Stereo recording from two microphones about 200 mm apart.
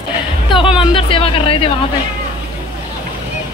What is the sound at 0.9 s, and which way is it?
Speech, 25° left (ahead or behind).